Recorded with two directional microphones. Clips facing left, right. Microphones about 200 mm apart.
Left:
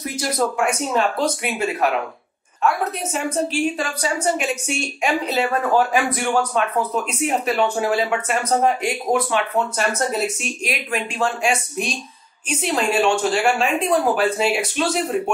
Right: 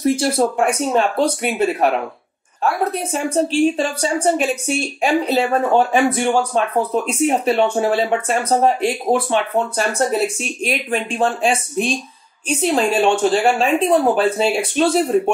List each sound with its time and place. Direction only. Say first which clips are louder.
0.0 s a woman's voice: right 6 dB; 30° right (ahead or behind)
12.7 s a woman's voice: right 2 dB; 30° right (ahead or behind)